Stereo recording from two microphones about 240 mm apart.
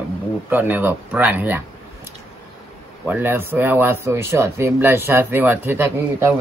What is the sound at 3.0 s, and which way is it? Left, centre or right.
Speech, centre.